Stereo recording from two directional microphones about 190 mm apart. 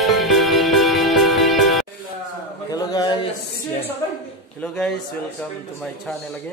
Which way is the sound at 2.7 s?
20° left (ahead or behind).